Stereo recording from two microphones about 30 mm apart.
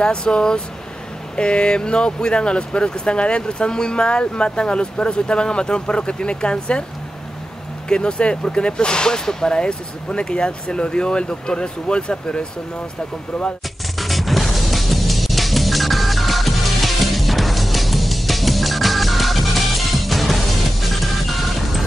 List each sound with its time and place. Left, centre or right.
0.0 s speech: left
7.9 s speech: left
13.9 s music: centre